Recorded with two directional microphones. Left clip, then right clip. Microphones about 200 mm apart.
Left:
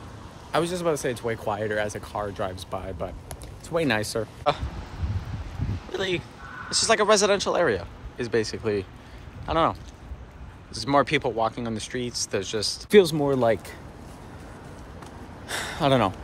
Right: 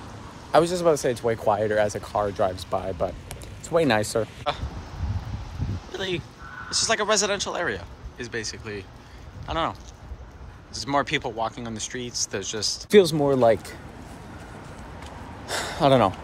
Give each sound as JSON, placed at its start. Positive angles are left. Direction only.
{"t": 0.5, "sound": "speech", "side_deg": 10}
{"t": 5.9, "sound": "speech", "side_deg": -15}
{"t": 12.9, "sound": "speech", "side_deg": 20}
{"t": 15.4, "sound": "a sound", "side_deg": 15}